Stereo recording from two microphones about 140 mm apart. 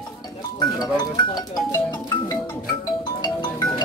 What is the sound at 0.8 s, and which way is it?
Speech, 30° left (ahead or behind).